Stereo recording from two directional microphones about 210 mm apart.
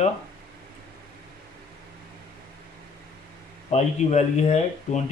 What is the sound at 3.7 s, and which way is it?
Speech, 35° left (ahead or behind).